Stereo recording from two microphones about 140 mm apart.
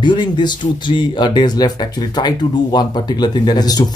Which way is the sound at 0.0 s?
35° left (ahead or behind).